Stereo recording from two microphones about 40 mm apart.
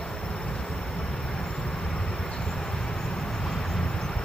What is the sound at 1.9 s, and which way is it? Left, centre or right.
Vehicle, centre.